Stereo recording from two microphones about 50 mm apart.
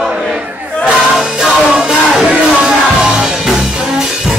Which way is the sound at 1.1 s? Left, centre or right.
Centre.